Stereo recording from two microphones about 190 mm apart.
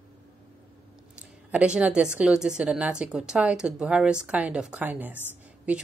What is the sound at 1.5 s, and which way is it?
A woman's voice, 5° right (ahead or behind).